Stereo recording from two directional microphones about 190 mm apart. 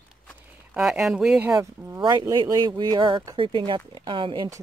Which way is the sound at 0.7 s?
5° right (ahead or behind).